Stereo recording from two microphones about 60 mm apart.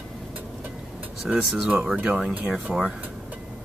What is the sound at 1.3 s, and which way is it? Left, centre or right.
Speech, right.